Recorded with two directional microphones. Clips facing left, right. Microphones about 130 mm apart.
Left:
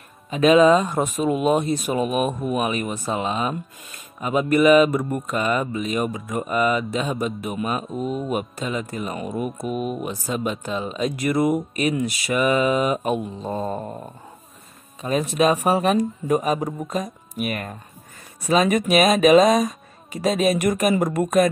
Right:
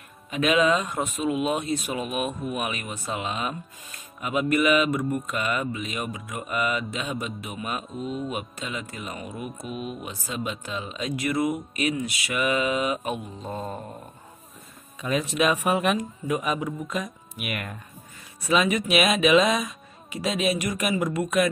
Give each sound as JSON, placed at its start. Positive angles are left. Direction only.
{"t": 0.3, "sound": "speech", "side_deg": 35}
{"t": 13.7, "sound": "a sound", "side_deg": 70}
{"t": 15.0, "sound": "speech", "side_deg": 40}